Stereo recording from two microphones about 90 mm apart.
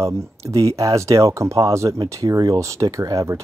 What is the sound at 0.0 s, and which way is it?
Speech, 35° right (ahead or behind).